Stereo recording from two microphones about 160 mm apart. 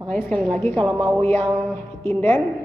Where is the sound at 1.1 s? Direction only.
15° left (ahead or behind).